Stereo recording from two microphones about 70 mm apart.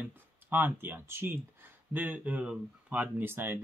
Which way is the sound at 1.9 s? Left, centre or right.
Right.